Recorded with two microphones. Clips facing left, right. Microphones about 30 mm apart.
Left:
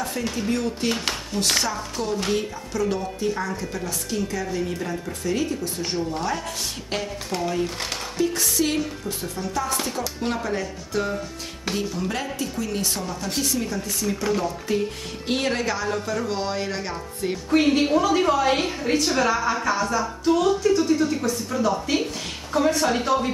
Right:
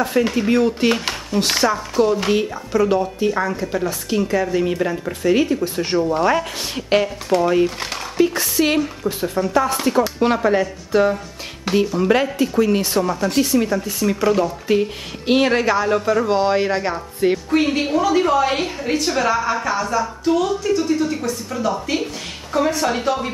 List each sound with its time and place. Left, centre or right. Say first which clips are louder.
0.0 s speech: right 9 dB; right
0.9 s a sound: right 5 dB; centre
1.5 s speech: right 5 dB; right
7.6 s a woman's voice: right 6 dB; centre
8.2 s speech: right 6 dB; right
11.7 s a woman's voice: right 9 dB; centre
12.0 s a woman's voice: right 10 dB; right; by 14.5 s centre
14.7 s speech: right 6 dB; right
17.5 s a woman's voice: right 1 dB; centre